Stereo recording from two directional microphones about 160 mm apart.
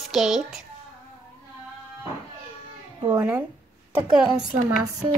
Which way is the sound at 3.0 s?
15° right (ahead or behind).